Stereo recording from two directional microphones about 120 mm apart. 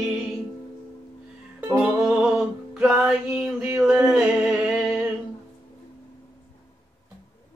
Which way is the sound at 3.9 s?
10° right (ahead or behind).